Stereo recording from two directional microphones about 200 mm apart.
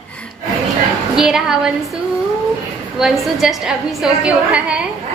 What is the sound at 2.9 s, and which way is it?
A woman's voice, centre (ahead or behind).